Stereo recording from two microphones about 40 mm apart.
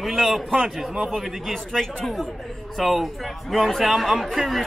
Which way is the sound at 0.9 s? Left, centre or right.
Right.